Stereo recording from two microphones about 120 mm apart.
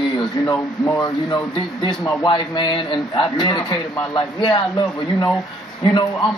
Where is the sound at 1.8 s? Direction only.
40° left (ahead or behind).